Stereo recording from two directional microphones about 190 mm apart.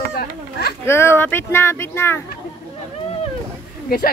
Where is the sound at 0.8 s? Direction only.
15° left (ahead or behind).